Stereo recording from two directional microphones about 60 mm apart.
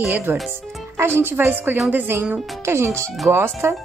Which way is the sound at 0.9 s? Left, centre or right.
Right.